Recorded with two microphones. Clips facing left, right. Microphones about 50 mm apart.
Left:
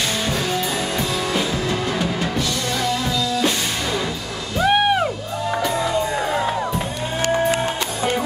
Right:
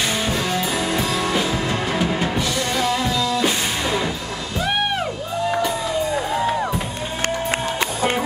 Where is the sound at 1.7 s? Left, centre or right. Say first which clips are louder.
Right 1 dB; centre.